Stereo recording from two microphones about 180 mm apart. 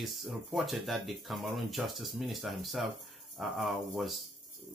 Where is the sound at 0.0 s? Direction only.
Centre (ahead or behind).